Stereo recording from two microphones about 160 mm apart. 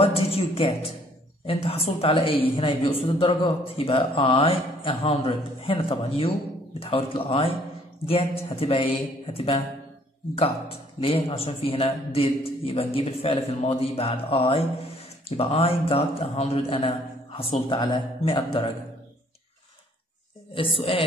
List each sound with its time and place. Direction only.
0.0 s a woman's voice: 40° left (ahead or behind)
20.5 s a woman's voice: 35° left (ahead or behind)